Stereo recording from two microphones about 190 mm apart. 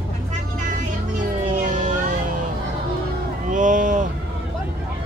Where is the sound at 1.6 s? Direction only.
40° right (ahead or behind).